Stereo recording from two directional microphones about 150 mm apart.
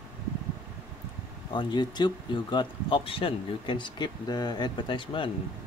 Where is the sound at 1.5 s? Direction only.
30° left (ahead or behind).